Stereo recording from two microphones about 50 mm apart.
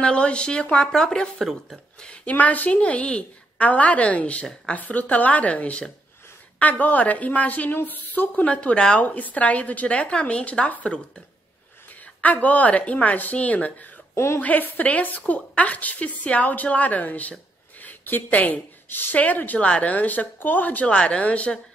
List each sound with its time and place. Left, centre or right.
0.0 s a woman's voice: left
1.4 s speech: centre
2.0 s a woman's voice: left
9.0 s a woman's voice: left
14.1 s a woman's voice: left
14.4 s a woman's voice: left
19.1 s a woman's voice: left
20.8 s a woman's voice: left